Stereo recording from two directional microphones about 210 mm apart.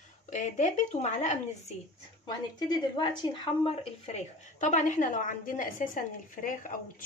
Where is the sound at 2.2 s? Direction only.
20° left (ahead or behind).